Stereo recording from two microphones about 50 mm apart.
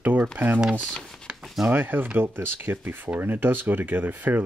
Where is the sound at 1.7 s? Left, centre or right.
Right.